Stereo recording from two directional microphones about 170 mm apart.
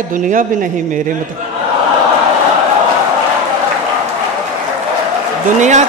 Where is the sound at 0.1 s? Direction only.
50° right (ahead or behind).